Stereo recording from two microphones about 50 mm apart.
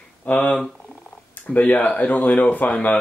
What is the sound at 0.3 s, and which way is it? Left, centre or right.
Speech, left.